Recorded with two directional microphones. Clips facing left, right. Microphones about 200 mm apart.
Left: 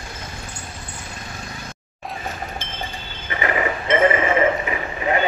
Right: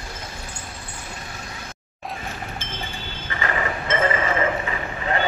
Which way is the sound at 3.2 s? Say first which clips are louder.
Left 4 dB; 20° left (ahead or behind).